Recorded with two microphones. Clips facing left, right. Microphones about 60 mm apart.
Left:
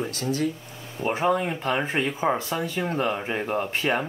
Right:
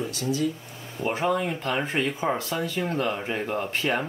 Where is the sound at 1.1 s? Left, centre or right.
Centre.